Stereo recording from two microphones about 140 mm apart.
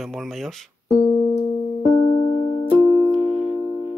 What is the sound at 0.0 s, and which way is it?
Speech, centre (ahead or behind).